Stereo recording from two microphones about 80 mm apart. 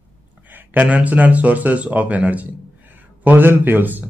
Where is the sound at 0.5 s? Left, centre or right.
Centre.